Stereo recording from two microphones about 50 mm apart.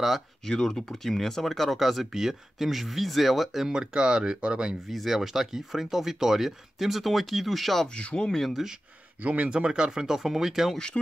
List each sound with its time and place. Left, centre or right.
0.4 s speech: centre
3.7 s speech: centre
4.8 s speech: centre
7.9 s speech: left
8.3 s speech: centre
9.2 s speech: right; by 10.8 s centre